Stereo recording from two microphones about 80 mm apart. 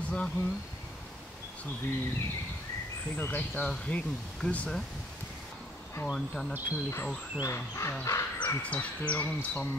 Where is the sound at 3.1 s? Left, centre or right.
Left.